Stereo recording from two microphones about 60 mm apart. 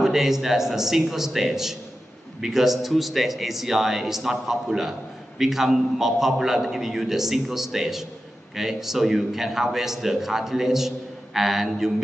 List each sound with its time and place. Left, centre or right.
0.0 s a man's voice: centre